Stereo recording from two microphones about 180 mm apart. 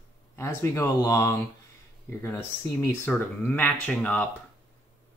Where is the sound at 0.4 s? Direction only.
15° left (ahead or behind).